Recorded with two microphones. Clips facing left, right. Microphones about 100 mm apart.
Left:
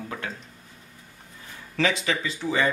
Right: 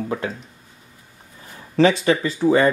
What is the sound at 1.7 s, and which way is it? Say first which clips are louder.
Speech: right 9 dB; 40° right (ahead or behind).